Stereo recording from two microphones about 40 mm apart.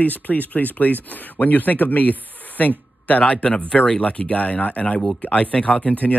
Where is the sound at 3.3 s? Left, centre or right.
Left.